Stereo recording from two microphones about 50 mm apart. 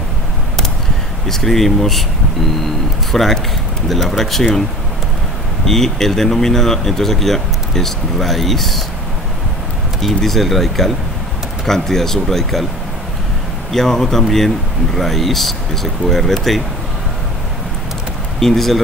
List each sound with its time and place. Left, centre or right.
1.3 s speech: centre
3.1 s speech: centre
5.7 s speech: centre
9.9 s speech: centre
13.7 s speech: centre
18.4 s speech: centre